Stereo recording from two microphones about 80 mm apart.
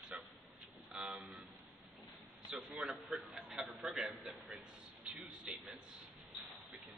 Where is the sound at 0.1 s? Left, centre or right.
Centre.